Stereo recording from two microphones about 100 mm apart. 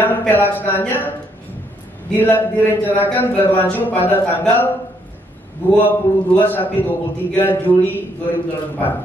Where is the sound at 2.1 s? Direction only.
20° left (ahead or behind).